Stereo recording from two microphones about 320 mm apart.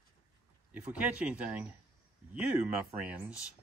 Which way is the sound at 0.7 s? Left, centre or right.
Centre.